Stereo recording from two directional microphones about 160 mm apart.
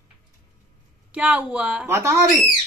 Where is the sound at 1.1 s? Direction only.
10° right (ahead or behind).